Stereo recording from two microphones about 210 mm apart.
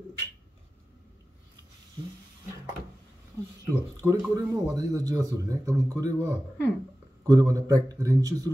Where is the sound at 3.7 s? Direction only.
15° right (ahead or behind).